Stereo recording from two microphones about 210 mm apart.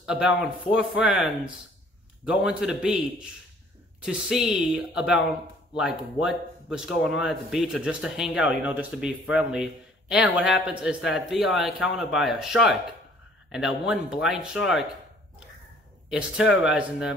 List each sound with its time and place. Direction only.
0.0 s a man's voice: 5° right (ahead or behind)
16.1 s a man's voice: 5° right (ahead or behind)